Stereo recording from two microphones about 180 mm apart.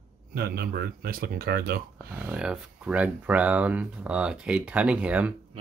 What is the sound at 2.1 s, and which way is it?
Speech, 10° right (ahead or behind).